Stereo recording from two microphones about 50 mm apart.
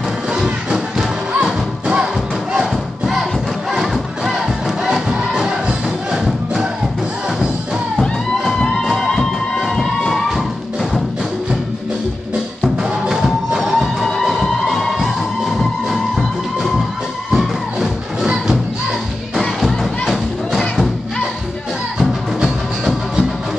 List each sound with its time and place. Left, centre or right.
0.3 s music: centre
8.0 s music: centre
8.8 s music: centre
13.0 s music: centre
18.2 s music: centre
19.4 s music: centre
22.0 s music: centre